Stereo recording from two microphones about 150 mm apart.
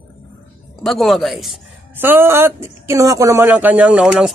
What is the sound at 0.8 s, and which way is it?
Speech, centre (ahead or behind).